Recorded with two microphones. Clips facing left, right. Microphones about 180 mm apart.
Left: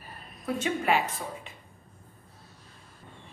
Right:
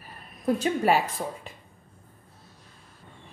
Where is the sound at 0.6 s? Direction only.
35° right (ahead or behind).